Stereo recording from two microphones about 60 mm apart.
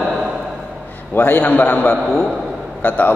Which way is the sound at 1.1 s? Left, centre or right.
Left.